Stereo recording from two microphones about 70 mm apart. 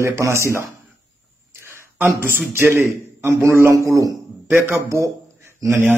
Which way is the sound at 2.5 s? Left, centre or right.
Right.